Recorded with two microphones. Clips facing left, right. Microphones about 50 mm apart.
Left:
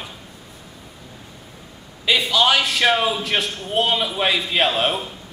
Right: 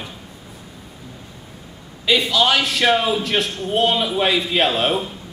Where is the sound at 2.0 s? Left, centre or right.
Centre.